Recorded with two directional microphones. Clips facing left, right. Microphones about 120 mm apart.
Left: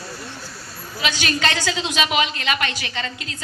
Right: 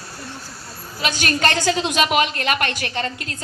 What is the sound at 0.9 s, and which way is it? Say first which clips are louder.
A woman's voice: right 1 dB; 45° right (ahead or behind).